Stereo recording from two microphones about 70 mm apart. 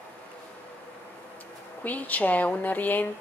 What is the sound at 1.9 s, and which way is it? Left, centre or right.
Speech, left.